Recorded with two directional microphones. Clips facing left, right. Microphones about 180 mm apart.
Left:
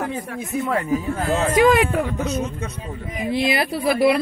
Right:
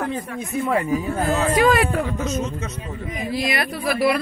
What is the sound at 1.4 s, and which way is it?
Speech, 20° left (ahead or behind).